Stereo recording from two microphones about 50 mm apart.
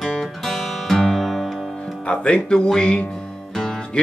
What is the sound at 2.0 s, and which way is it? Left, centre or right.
Music, left.